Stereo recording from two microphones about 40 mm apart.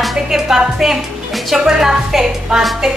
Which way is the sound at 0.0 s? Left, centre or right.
Centre.